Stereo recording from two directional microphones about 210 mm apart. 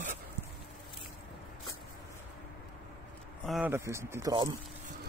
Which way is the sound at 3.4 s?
5° right (ahead or behind).